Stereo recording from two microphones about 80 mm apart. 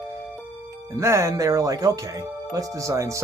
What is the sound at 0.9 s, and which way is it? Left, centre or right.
Speech, right.